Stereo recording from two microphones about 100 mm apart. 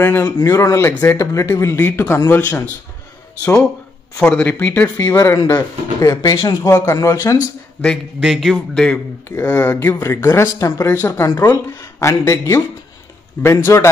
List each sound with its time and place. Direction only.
0.0 s speech: 25° left (ahead or behind)
4.2 s speech: 10° left (ahead or behind)
5.0 s speech: 30° left (ahead or behind)
8.2 s speech: centre (ahead or behind); by 13.8 s 25° left (ahead or behind)